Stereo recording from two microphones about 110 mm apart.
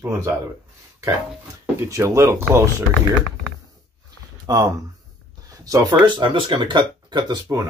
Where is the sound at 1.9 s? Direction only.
25° right (ahead or behind).